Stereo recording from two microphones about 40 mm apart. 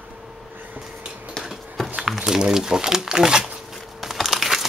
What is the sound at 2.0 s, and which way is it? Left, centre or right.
Speech, centre.